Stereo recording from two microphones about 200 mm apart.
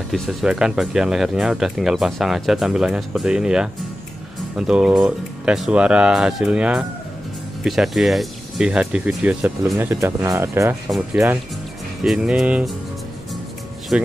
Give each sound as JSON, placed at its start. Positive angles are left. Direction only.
{"t": 0.1, "sound": "speech", "side_deg": 0}
{"t": 12.0, "sound": "speech", "side_deg": -5}
{"t": 13.9, "sound": "speech", "side_deg": -5}